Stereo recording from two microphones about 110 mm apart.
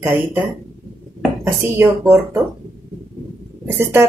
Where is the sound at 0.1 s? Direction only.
15° right (ahead or behind).